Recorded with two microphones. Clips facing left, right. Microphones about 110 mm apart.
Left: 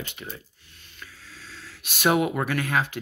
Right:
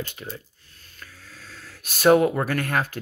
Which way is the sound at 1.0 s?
45° right (ahead or behind).